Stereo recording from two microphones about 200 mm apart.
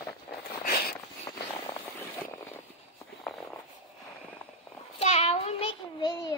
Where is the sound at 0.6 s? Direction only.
50° left (ahead or behind).